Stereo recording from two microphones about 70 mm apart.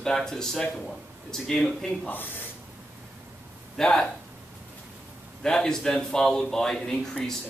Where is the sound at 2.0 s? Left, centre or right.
Left.